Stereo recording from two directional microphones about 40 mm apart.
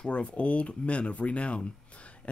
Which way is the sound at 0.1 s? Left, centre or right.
Left.